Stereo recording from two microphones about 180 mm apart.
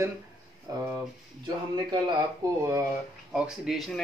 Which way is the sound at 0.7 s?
20° right (ahead or behind).